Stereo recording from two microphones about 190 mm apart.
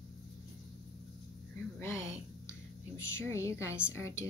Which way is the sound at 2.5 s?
15° left (ahead or behind).